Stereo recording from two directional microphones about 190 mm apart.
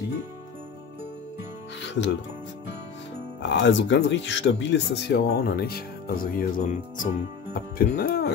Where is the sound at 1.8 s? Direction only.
65° left (ahead or behind).